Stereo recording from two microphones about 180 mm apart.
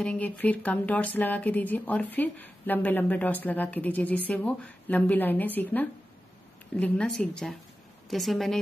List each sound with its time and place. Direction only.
0.0 s a woman's voice: 5° left (ahead or behind)